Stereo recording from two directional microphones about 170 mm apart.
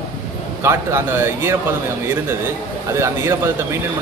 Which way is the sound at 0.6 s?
15° right (ahead or behind).